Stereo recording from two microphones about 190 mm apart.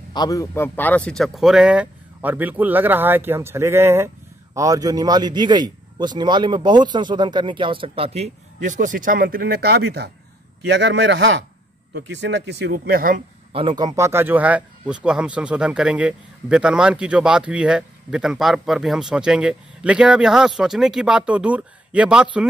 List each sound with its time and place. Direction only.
0.1 s a man's voice: 20° left (ahead or behind); by 13.2 s 50° right (ahead or behind)
13.5 s speech: 30° right (ahead or behind); by 22.5 s 5° right (ahead or behind)